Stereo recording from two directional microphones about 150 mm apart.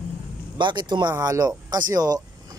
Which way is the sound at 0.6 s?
30° right (ahead or behind).